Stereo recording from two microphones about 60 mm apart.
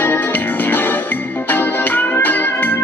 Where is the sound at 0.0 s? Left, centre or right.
Left.